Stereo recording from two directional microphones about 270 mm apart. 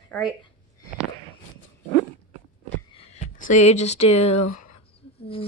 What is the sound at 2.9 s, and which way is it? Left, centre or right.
Speech, left.